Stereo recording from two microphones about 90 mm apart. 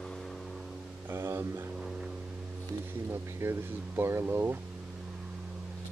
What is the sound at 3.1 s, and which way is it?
Speech, 30° right (ahead or behind).